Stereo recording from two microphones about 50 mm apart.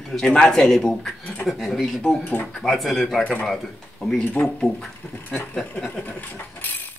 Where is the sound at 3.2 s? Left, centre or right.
Left.